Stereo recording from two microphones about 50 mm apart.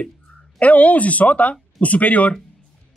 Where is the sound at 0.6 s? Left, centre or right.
Left.